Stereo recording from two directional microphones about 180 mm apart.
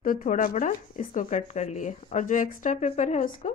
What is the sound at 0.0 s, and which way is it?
Speech, 50° left (ahead or behind).